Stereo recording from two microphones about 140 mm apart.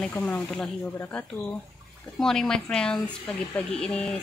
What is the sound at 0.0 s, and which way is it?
Speech, 10° left (ahead or behind).